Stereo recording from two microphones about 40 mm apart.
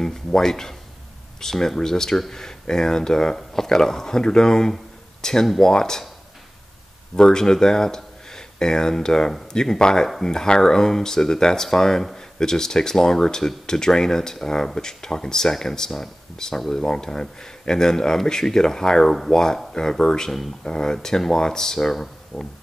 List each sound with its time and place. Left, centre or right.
0.0 s speech: centre
7.2 s speech: centre